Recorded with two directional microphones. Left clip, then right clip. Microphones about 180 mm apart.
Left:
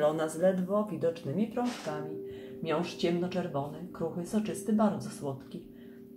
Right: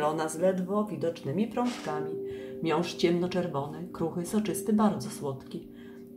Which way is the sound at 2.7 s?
45° right (ahead or behind).